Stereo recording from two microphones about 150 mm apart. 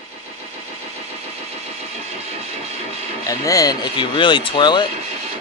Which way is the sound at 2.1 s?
45° right (ahead or behind).